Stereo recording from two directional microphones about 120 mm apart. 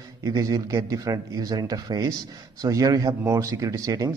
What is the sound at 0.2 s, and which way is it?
Speech, 30° right (ahead or behind).